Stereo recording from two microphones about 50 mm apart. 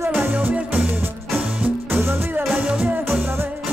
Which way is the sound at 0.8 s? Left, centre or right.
Right.